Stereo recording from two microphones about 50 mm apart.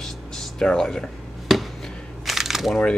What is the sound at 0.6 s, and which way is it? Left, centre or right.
Speech, centre.